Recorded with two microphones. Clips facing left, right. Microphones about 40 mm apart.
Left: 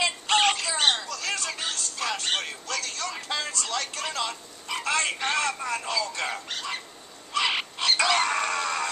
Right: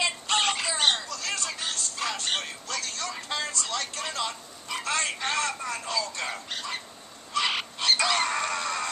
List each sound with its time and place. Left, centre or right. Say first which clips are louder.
0.0 s bird: left 3 dB; centre
1.0 s music: left 2 dB; centre
2.7 s a sound: left 1 dB; centre
7.3 s bird: left 1 dB; centre